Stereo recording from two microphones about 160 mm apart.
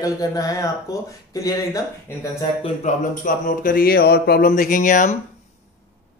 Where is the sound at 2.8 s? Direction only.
55° left (ahead or behind); by 4.4 s 85° left.